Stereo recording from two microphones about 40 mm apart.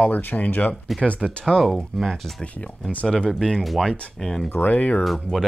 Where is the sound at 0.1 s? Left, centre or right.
Left.